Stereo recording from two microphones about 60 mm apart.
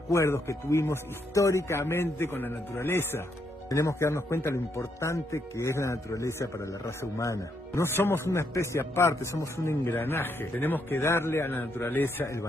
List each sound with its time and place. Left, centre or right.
0.1 s speech: left
3.6 s speech: left
4.0 s speech: left
11.0 s speech: left